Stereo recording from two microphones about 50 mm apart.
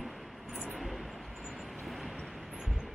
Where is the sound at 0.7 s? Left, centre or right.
Centre.